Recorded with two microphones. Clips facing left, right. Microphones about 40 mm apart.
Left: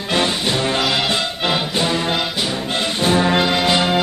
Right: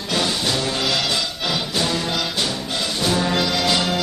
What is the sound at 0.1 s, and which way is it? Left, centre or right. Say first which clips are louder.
Music: left 3 dB; left.